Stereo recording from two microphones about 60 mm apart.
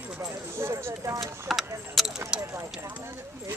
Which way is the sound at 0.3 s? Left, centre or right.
Right.